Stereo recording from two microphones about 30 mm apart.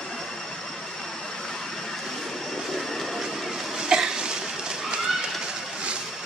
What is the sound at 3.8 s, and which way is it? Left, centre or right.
Cough, right.